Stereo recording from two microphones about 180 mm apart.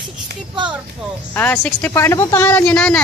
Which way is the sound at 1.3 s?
10° left (ahead or behind).